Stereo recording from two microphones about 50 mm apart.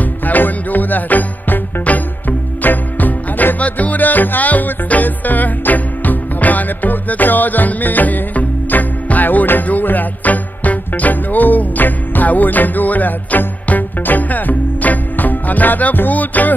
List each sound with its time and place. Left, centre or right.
0.0 s music: left